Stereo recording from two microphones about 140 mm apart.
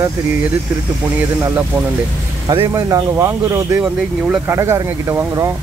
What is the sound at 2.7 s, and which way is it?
Speech, 20° right (ahead or behind).